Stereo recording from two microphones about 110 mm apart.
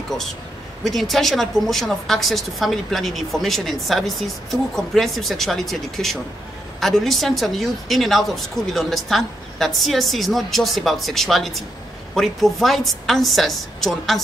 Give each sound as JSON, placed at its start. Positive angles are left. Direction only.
{"t": 0.8, "sound": "a woman's voice", "side_deg": 0}